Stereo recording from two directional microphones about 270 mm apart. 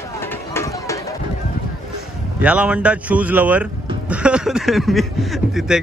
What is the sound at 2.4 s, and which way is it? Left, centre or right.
Speech, centre.